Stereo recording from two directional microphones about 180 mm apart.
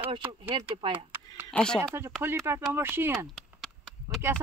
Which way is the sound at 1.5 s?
5° left (ahead or behind).